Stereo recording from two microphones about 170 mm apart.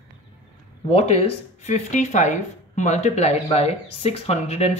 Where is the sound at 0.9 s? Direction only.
35° left (ahead or behind).